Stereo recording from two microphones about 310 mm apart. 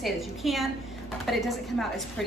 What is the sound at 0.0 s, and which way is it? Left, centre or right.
Speech, centre.